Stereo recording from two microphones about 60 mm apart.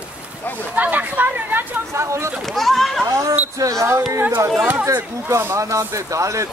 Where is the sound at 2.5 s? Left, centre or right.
Centre.